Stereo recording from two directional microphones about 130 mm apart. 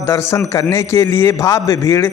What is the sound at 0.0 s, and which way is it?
A man's voice, 20° left (ahead or behind).